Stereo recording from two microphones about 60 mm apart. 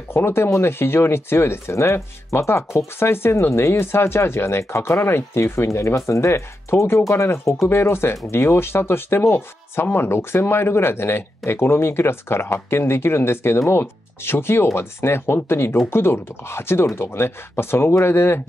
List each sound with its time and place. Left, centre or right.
0.1 s speech: left